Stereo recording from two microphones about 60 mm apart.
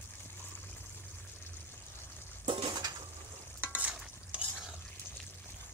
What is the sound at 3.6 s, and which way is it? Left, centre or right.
Stir, right.